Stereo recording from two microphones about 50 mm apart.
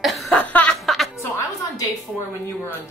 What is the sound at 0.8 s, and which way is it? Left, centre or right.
Music, centre.